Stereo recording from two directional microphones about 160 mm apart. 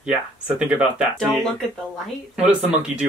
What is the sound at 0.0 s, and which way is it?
Speech, 10° right (ahead or behind).